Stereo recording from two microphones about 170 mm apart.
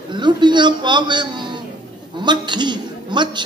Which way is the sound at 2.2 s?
25° right (ahead or behind).